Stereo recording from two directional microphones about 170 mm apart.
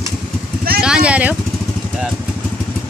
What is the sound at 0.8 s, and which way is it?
Speech, 5° right (ahead or behind).